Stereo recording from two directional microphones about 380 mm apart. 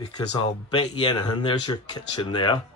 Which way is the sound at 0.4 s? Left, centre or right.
Centre.